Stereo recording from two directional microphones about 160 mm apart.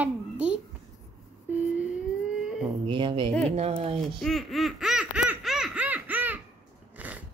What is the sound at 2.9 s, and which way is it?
Speech, 30° right (ahead or behind).